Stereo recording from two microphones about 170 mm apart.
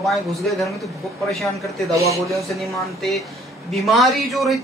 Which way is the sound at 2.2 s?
Centre (ahead or behind).